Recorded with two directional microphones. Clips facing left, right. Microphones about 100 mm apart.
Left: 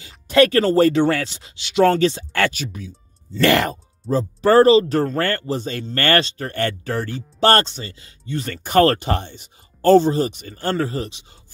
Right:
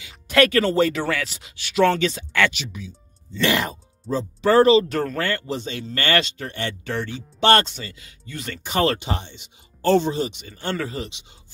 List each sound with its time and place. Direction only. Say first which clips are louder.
0.0 s speech: left 3 dB; 35° left (ahead or behind)
1.9 s speech: left 4 dB; 35° left (ahead or behind)
3.3 s speech: left 5 dB; 60° left (ahead or behind)
4.2 s speech: left 3 dB; 40° left (ahead or behind)
8.6 s speech: left 6 dB; 50° left (ahead or behind)